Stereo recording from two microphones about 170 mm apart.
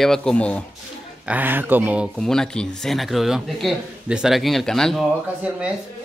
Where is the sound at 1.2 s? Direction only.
10° right (ahead or behind).